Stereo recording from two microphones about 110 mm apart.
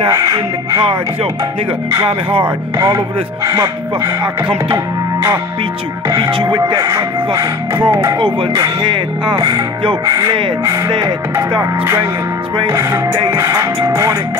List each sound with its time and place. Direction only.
0.1 s speech: 30° right (ahead or behind)
2.0 s speech: 50° right (ahead or behind)
3.4 s speech: 30° right (ahead or behind)
6.1 s speech: 40° right (ahead or behind)
6.8 s speech: 30° right (ahead or behind)
8.5 s speech: 40° right (ahead or behind)
10.9 s speech: 45° right (ahead or behind)
12.6 s speech: 25° right (ahead or behind)